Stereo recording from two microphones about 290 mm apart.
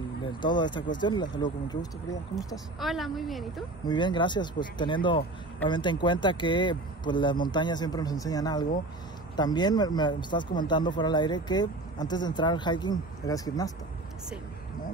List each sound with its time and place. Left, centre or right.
0.3 s speech: centre
2.3 s a woman's voice: centre
3.8 s speech: centre